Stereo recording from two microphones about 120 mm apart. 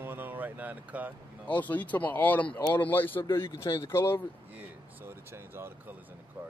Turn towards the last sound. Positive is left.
turn(degrees=-20)  # may be behind; listen again after turning